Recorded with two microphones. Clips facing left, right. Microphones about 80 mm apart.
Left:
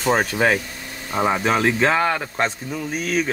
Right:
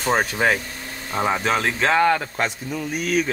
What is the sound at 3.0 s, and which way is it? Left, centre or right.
Speech, left.